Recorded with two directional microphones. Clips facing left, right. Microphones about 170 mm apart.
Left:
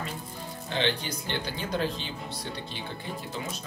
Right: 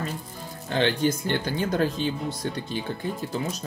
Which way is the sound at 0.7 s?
45° right (ahead or behind).